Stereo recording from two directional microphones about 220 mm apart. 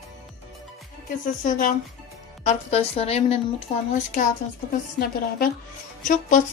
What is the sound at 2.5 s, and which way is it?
Speech, 30° left (ahead or behind).